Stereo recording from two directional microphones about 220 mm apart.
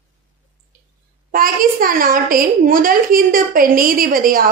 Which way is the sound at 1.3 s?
40° right (ahead or behind).